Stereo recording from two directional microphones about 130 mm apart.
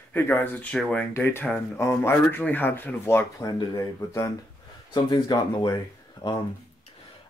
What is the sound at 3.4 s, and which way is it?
Speech, 25° left (ahead or behind).